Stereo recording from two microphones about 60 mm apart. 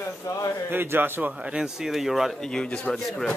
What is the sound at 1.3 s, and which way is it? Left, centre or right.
Speech, centre.